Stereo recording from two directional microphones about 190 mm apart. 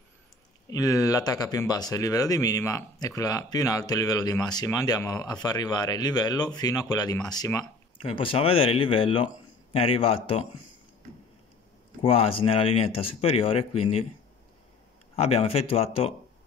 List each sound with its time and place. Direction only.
0.7 s speech: 20° left (ahead or behind)
12.0 s speech: 30° left (ahead or behind)
15.1 s speech: 30° left (ahead or behind)